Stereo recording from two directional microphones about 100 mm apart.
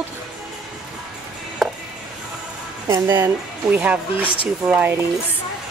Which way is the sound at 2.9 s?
35° right (ahead or behind).